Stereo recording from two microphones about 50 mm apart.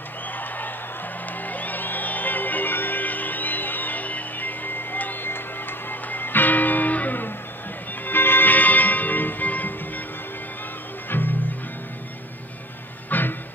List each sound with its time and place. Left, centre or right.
1.4 s music: left
11.1 s music: left
13.1 s a sound: left